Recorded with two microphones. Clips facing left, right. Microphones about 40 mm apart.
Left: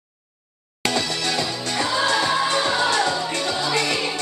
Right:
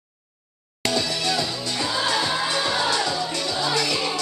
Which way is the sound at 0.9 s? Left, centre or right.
Left.